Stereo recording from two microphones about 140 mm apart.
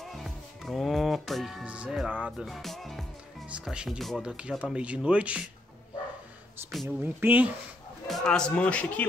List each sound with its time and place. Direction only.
0.0 s speech: centre (ahead or behind)
6.6 s speech: 15° right (ahead or behind)
8.1 s speech: 5° left (ahead or behind)